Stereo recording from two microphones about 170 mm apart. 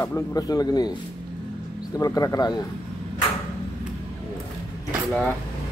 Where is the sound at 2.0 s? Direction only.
20° left (ahead or behind).